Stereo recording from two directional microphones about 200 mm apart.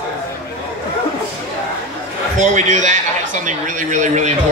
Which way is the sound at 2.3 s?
40° right (ahead or behind).